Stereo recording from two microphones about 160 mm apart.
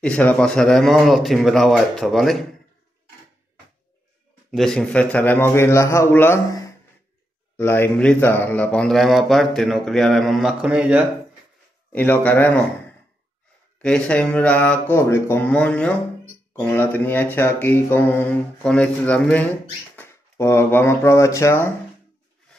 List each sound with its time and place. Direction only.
0.0 s speech: 10° left (ahead or behind)
4.5 s speech: centre (ahead or behind)
11.9 s speech: 10° left (ahead or behind)
13.7 s speech: 5° left (ahead or behind)